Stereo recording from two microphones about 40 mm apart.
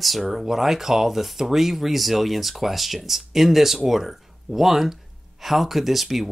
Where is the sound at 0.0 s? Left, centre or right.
Centre.